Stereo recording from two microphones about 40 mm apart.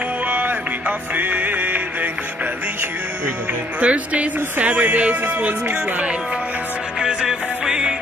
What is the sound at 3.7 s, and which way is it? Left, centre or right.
Speech, right.